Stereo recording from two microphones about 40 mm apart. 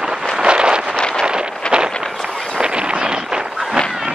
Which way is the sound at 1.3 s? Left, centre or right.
Right.